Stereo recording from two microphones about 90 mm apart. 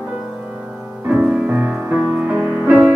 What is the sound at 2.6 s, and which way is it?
Music, 15° right (ahead or behind).